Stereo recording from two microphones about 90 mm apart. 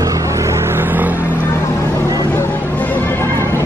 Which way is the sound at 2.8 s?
20° left (ahead or behind).